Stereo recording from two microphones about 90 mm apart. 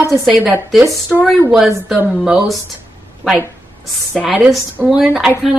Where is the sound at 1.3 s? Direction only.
5° right (ahead or behind).